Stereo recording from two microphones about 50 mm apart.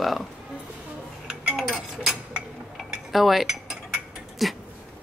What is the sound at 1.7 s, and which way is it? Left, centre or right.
Dishes, centre.